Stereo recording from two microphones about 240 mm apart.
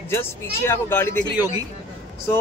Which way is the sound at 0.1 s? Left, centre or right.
Centre.